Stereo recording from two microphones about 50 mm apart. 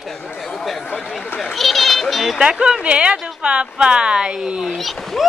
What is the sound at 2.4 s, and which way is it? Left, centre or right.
Speech, centre.